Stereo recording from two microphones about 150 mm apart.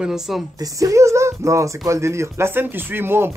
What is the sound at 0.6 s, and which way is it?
Speech, 20° right (ahead or behind).